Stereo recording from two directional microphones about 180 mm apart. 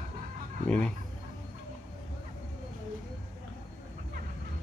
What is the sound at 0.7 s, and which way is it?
Speech, 5° left (ahead or behind).